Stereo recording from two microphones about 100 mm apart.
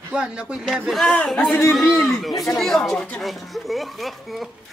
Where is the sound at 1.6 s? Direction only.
30° left (ahead or behind).